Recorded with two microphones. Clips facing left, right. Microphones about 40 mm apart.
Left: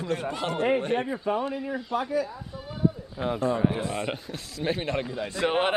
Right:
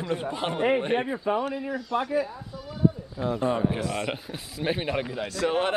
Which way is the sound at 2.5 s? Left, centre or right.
Left.